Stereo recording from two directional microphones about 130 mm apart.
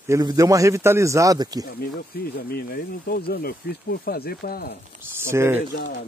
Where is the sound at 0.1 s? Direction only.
30° right (ahead or behind).